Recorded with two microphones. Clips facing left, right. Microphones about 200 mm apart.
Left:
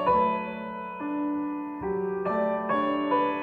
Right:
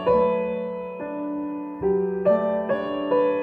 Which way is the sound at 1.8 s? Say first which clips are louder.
Right 9 dB; 30° right (ahead or behind).